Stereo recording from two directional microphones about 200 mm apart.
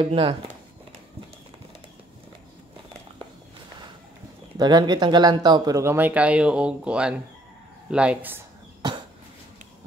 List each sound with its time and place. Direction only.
0.0 s speech: 25° right (ahead or behind)
4.6 s speech: 20° right (ahead or behind)